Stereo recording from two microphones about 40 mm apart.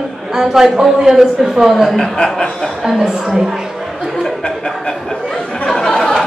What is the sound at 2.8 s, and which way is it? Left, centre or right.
Speech, centre.